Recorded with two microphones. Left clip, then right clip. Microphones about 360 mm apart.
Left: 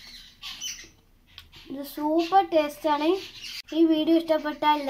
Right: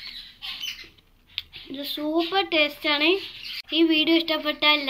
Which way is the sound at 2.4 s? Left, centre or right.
Left.